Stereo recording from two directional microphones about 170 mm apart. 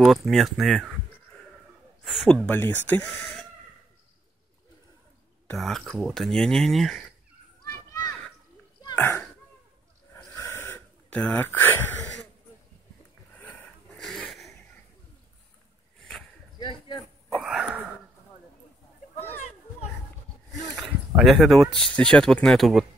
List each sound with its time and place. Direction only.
0.0 s speech: centre (ahead or behind)
2.0 s speech: 5° left (ahead or behind)
5.5 s speech: centre (ahead or behind)
7.9 s children playing: 20° left (ahead or behind)
8.9 s speech: 10° left (ahead or behind)
10.1 s a sound: 15° left (ahead or behind)
13.4 s a sound: 5° left (ahead or behind)
16.5 s a sound: 25° left (ahead or behind)
17.4 s sneeze: 5° right (ahead or behind)
21.2 s speech: centre (ahead or behind)